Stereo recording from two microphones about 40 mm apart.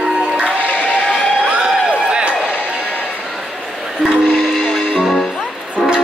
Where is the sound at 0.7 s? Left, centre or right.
Left.